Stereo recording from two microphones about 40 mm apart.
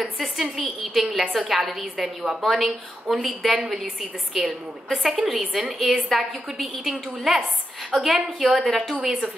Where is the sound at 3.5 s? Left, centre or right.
Centre.